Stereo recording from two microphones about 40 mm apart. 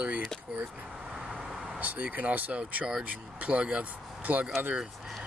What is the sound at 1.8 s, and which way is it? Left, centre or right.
Speech, right.